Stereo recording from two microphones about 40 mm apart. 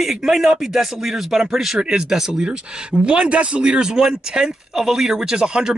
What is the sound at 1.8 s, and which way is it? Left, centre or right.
Speech, right.